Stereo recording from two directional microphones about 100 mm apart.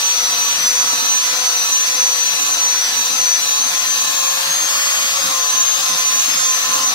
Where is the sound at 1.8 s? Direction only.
45° left (ahead or behind).